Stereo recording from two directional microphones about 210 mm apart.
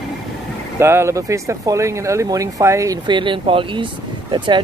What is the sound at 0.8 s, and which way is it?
Speech, 10° right (ahead or behind).